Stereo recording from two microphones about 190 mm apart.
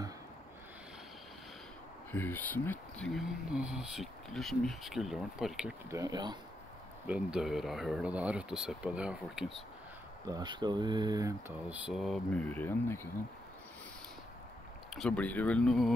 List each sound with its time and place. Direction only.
2.1 s speech: 10° left (ahead or behind)
5.9 s speech: 20° right (ahead or behind)
7.1 s speech: 5° right (ahead or behind)
10.2 s speech: 20° right (ahead or behind); by 13.1 s 15° left (ahead or behind)
15.0 s speech: 5° left (ahead or behind)